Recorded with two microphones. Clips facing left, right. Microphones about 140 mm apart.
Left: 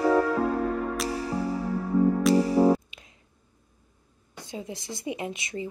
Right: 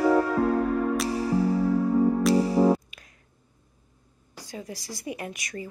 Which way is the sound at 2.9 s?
25° left (ahead or behind).